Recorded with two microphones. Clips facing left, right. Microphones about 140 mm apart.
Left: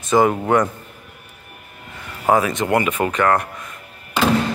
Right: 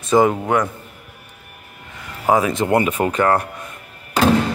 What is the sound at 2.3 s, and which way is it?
Speech, 15° right (ahead or behind).